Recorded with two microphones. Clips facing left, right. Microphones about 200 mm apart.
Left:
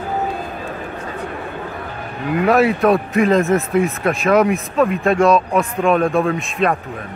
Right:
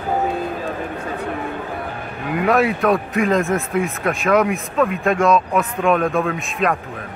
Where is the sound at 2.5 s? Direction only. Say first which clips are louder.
Left 3 dB; 35° left (ahead or behind).